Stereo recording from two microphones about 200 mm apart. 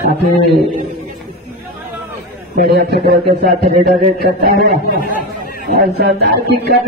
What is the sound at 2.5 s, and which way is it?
A man's voice, 50° right (ahead or behind).